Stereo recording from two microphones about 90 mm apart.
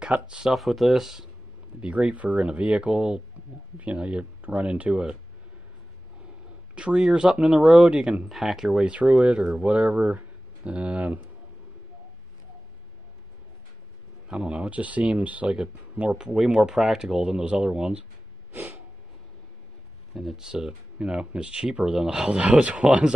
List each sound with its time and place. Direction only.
0.0 s speech: 10° right (ahead or behind)
1.8 s speech: 15° right (ahead or behind)
6.7 s speech: 10° right (ahead or behind)
14.2 s speech: 10° right (ahead or behind)
18.5 s a sound: 25° right (ahead or behind)
20.2 s speech: 5° right (ahead or behind)